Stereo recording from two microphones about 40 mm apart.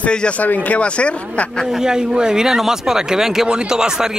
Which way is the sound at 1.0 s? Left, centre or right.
Left.